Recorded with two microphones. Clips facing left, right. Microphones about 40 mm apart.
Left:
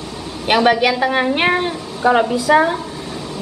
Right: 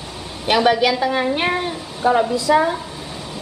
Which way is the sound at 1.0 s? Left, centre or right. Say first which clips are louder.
Left 3 dB; left.